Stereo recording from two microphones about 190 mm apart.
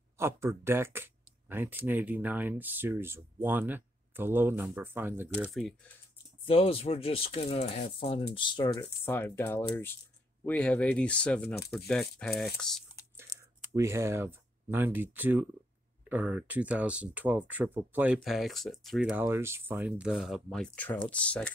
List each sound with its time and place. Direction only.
0.2 s speech: 15° right (ahead or behind)
6.4 s speech: 30° left (ahead or behind)
9.0 s speech: 10° left (ahead or behind)
13.4 s speech: 15° right (ahead or behind)
19.2 s speech: 15° right (ahead or behind); by 21.5 s 5° left (ahead or behind)